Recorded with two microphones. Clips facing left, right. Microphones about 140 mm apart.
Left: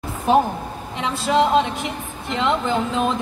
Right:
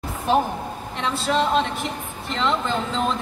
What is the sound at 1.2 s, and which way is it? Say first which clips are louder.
Speech: left 4 dB; 15° left (ahead or behind).